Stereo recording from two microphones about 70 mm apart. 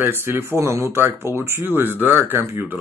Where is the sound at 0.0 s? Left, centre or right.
Right.